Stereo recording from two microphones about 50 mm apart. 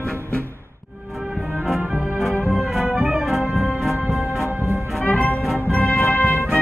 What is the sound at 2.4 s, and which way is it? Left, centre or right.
Music, centre.